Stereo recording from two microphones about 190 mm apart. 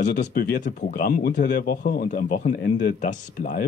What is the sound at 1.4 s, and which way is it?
Speech, 60° left (ahead or behind).